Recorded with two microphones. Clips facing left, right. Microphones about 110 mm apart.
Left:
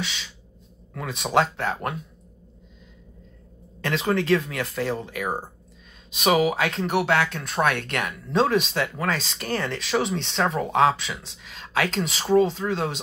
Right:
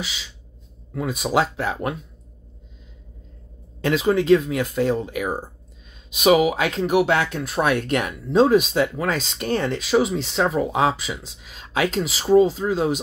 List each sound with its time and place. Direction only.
0.9 s speech: 10° right (ahead or behind)
3.8 s speech: 15° right (ahead or behind)
9.8 s speech: 10° right (ahead or behind)